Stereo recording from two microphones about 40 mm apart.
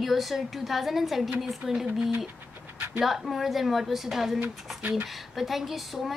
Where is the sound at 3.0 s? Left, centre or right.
Centre.